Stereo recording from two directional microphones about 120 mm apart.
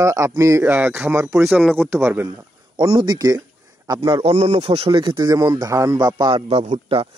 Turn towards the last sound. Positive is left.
turn(degrees=-50)  # may be behind; listen again after turning